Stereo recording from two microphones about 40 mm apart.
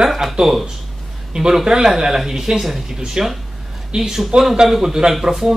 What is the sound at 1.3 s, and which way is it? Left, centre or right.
Speech, centre.